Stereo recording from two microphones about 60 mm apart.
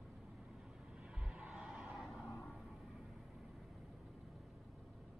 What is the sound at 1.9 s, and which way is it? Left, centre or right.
Vehicle, centre.